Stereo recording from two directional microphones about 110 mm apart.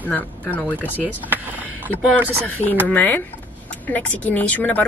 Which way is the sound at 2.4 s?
15° left (ahead or behind).